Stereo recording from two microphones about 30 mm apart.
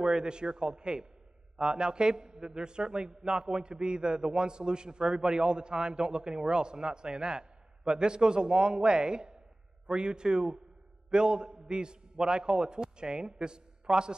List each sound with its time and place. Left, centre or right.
0.0 s a man's voice: right